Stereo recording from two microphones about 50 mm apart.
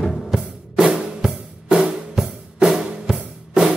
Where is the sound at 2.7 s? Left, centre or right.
Centre.